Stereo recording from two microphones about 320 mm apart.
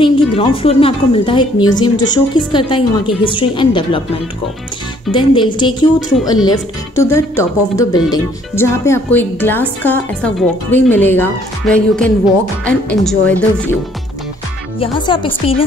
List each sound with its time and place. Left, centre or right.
0.0 s a woman's voice: centre
5.1 s a woman's voice: centre
14.8 s a woman's voice: centre